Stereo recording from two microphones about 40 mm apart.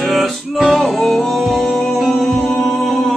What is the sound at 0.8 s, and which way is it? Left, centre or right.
Music, centre.